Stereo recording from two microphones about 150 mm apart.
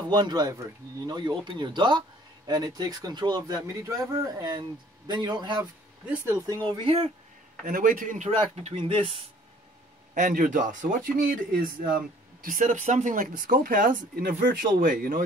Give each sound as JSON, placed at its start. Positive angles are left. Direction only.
{"t": 0.1, "sound": "speech", "side_deg": -25}
{"t": 6.0, "sound": "speech", "side_deg": -15}
{"t": 6.4, "sound": "speech", "side_deg": -25}
{"t": 7.6, "sound": "speech", "side_deg": -65}
{"t": 8.7, "sound": "speech", "side_deg": -35}
{"t": 10.1, "sound": "speech", "side_deg": -60}